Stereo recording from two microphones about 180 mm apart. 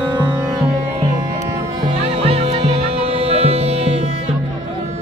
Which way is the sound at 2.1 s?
30° right (ahead or behind).